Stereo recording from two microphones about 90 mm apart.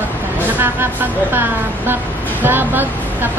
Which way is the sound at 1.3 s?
25° right (ahead or behind).